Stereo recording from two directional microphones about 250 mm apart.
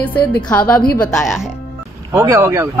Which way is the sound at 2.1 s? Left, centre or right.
Centre.